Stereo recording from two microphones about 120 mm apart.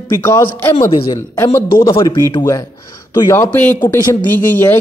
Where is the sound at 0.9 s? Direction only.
45° left (ahead or behind).